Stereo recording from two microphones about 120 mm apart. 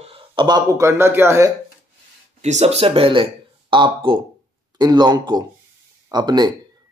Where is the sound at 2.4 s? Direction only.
65° right (ahead or behind).